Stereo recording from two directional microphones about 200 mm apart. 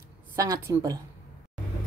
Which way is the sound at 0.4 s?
15° right (ahead or behind).